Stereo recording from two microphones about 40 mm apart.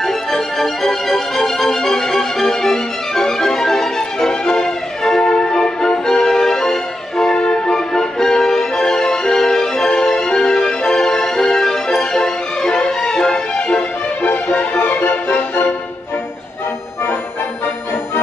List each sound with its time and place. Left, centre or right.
0.0 s music: centre; by 13.8 s left
14.2 s music: left